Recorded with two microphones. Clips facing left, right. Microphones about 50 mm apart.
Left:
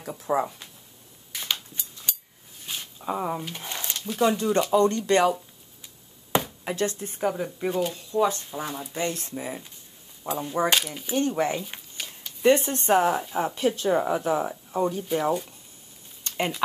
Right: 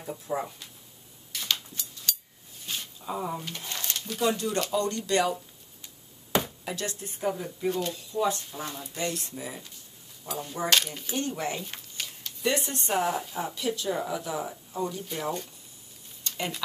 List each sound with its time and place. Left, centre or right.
0.3 s speech: left
1.3 s a sound: left
2.6 s a sound: centre
3.0 s speech: left
4.7 s speech: left
6.6 s speech: left; by 8.9 s centre
8.9 s speech: left
10.7 s speech: centre
11.1 s speech: left
11.7 s a sound: centre
12.4 s speech: left
13.0 s speech: left
13.6 s speech: left
16.3 s a sound: left